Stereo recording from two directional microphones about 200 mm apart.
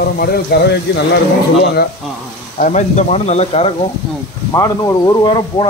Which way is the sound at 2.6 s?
35° left (ahead or behind).